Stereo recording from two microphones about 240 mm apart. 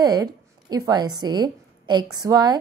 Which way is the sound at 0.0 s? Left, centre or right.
Centre.